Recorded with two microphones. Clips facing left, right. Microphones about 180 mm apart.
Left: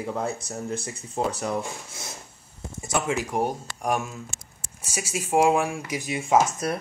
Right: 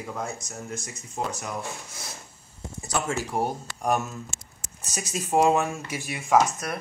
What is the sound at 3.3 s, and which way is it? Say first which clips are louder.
Speech: left 2 dB; 15° left (ahead or behind).